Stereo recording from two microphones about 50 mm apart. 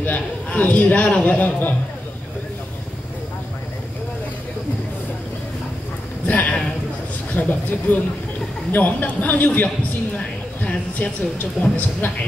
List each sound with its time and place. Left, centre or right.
0.0 s a man's voice: left
6.2 s a man's voice: left
12.0 s speech: left